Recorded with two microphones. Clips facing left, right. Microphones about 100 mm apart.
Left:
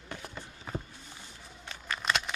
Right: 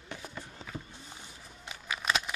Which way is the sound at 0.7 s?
40° left (ahead or behind).